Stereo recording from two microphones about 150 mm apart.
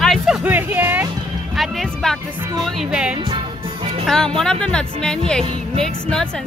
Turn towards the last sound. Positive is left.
turn(degrees=5)  # may be behind; listen again after turning